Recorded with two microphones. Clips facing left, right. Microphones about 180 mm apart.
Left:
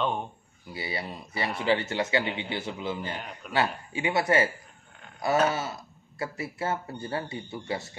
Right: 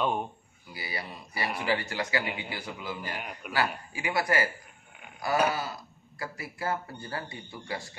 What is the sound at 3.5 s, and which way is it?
Speech, 25° left (ahead or behind).